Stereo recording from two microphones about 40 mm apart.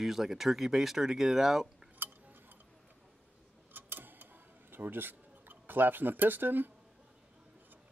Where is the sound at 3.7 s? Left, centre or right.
Right.